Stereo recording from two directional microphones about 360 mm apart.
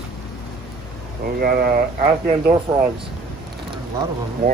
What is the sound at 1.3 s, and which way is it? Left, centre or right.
Speech, right.